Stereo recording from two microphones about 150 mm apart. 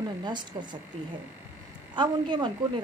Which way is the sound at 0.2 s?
30° right (ahead or behind).